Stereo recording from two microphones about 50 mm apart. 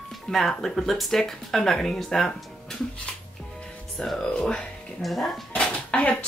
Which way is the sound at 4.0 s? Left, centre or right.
Centre.